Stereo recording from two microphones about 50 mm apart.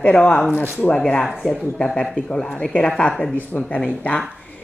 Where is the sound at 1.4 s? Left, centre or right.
Centre.